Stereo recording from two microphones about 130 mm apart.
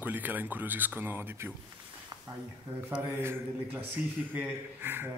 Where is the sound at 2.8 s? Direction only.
20° right (ahead or behind).